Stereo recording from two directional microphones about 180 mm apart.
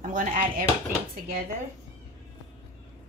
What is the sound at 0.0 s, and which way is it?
Speech, 45° right (ahead or behind).